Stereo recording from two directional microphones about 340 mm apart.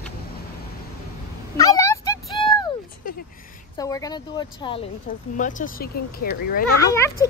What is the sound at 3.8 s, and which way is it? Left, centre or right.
A woman's voice, centre.